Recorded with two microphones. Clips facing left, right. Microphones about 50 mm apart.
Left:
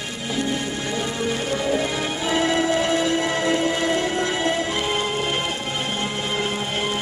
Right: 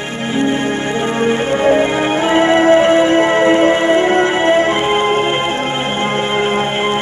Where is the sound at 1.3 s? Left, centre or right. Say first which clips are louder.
Right 11 dB; right.